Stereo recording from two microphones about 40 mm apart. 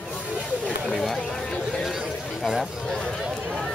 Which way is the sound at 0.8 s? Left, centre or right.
Centre.